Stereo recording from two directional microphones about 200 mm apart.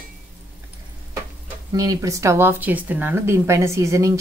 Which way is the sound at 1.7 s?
20° right (ahead or behind).